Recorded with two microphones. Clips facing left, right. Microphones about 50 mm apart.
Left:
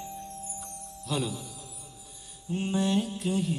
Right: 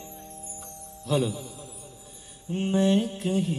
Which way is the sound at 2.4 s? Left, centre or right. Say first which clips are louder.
Right 5 dB; right.